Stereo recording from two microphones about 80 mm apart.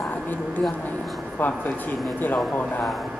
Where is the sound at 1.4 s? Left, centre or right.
Left.